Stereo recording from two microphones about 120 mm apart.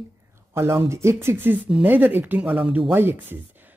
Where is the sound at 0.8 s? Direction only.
25° right (ahead or behind).